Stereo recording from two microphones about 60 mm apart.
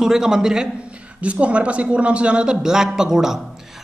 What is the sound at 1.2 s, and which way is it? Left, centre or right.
Speech, right.